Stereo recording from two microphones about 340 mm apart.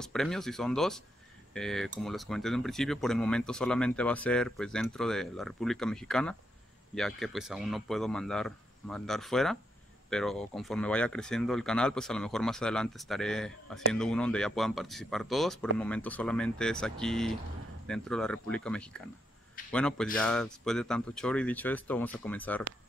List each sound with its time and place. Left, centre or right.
0.0 s speech: centre